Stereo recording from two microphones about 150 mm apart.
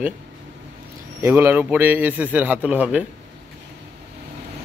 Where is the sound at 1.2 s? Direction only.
15° right (ahead or behind).